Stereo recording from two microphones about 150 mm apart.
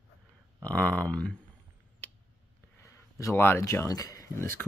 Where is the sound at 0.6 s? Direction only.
10° left (ahead or behind).